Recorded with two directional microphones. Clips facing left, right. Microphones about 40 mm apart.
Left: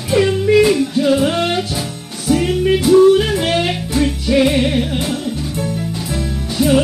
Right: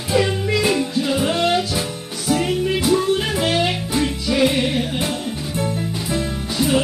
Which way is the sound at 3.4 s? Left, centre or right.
Left.